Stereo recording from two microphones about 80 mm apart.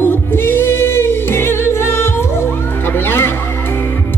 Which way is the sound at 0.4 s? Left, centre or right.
Left.